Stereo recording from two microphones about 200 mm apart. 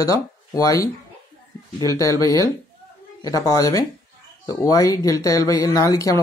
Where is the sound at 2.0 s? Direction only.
15° left (ahead or behind).